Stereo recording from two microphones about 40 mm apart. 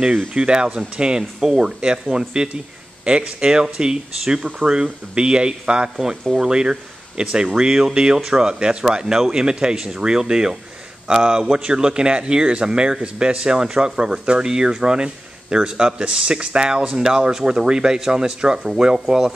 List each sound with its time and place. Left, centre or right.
0.3 s speech: right
4.6 s speech: right
5.1 s speech: right